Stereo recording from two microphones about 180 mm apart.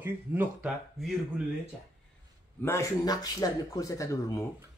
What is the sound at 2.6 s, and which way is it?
Speech, 15° left (ahead or behind).